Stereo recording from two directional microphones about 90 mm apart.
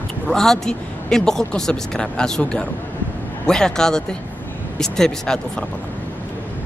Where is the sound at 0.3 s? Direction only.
5° left (ahead or behind).